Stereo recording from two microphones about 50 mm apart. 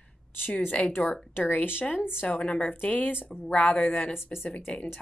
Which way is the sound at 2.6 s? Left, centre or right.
Left.